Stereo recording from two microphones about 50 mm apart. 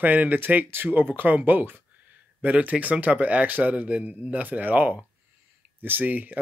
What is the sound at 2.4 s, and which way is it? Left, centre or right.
Speech, right.